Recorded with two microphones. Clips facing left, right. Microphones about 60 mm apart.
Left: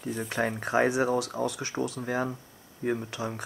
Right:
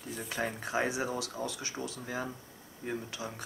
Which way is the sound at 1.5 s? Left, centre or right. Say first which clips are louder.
Left 8 dB; left.